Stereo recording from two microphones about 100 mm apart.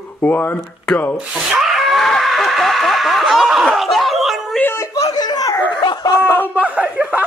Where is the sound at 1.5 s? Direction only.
5° right (ahead or behind).